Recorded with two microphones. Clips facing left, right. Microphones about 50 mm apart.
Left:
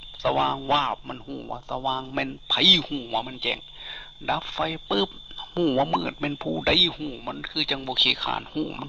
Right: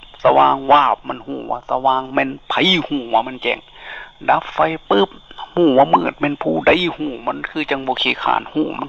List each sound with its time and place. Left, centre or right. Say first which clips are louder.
0.2 s a man's voice: right 12 dB; right